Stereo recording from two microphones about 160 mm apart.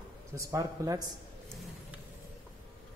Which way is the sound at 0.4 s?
20° right (ahead or behind).